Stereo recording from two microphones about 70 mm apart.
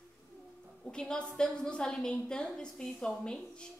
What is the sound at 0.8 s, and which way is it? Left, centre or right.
A woman's voice, centre.